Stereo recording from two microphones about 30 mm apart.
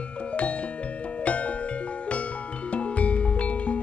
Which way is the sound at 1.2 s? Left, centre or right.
Left.